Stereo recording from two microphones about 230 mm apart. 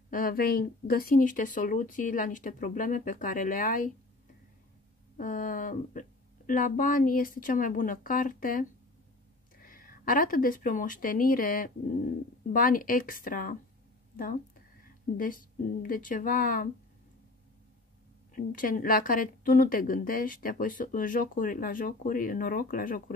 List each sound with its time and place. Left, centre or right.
0.1 s a woman's voice: left
5.1 s a woman's voice: left
18.3 s a woman's voice: left